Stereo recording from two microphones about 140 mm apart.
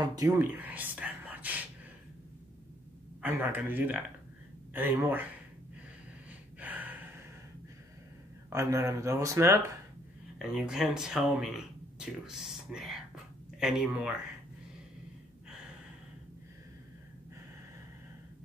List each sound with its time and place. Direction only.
0.0 s speech: 25° right (ahead or behind)
0.6 s whispering: 10° right (ahead or behind)
3.2 s speech: 10° right (ahead or behind)
6.6 s gasp: 10° right (ahead or behind)
8.5 s speech: 20° right (ahead or behind)
10.5 s speech: centre (ahead or behind)